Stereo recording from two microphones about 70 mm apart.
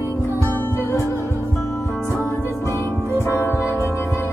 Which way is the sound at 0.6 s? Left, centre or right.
Left.